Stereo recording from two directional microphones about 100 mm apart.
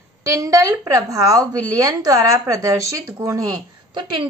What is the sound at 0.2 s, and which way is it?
Speech, 35° right (ahead or behind).